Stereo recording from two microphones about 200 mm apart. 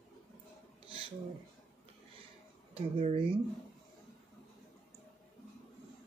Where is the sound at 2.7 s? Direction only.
30° right (ahead or behind).